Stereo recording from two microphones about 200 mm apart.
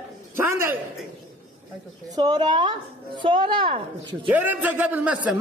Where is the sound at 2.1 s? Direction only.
20° right (ahead or behind).